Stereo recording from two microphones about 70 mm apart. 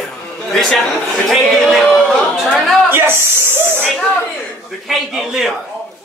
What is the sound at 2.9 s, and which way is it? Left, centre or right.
Speech, right.